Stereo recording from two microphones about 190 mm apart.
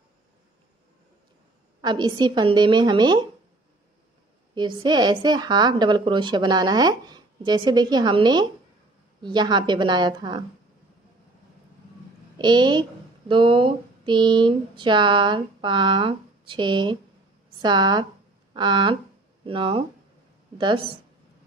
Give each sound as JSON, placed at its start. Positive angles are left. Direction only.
{"t": 1.8, "sound": "a woman's voice", "side_deg": -20}
{"t": 4.6, "sound": "a woman's voice", "side_deg": -25}
{"t": 12.4, "sound": "a woman's voice", "side_deg": -25}